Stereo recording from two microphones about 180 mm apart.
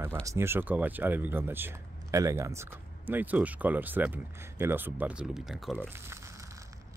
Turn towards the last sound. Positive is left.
turn(degrees=-15)  # may be behind; listen again after turning